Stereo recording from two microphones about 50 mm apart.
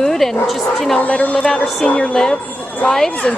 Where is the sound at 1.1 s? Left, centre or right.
Left.